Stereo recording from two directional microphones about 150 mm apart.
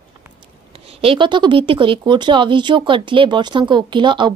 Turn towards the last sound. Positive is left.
turn(degrees=-30)  # may be behind; listen again after turning